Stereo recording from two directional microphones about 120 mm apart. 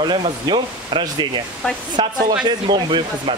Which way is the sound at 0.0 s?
40° right (ahead or behind).